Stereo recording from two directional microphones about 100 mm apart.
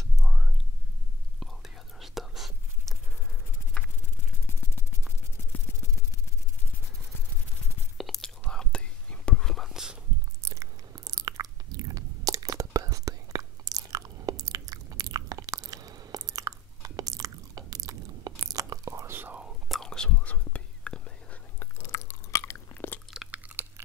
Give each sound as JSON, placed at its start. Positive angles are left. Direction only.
{"t": 0.2, "sound": "whispering", "side_deg": 0}
{"t": 8.0, "sound": "whispering", "side_deg": 5}
{"t": 10.5, "sound": "chewing", "side_deg": -35}
{"t": 13.8, "sound": "biting", "side_deg": -40}
{"t": 19.4, "sound": "whispering", "side_deg": 0}
{"t": 21.5, "sound": "chewing", "side_deg": 25}
{"t": 23.3, "sound": "chewing", "side_deg": -20}